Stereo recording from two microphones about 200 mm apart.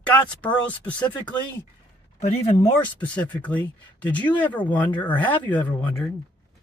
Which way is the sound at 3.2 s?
5° left (ahead or behind).